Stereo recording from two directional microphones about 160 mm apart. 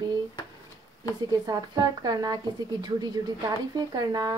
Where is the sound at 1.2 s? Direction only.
25° right (ahead or behind).